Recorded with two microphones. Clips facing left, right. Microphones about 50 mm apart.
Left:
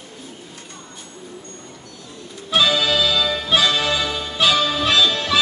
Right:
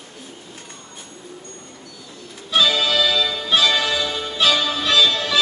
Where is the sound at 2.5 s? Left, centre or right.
Centre.